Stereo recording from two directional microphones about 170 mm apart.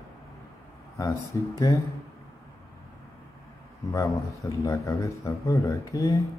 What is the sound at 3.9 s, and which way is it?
A man's voice, 20° left (ahead or behind).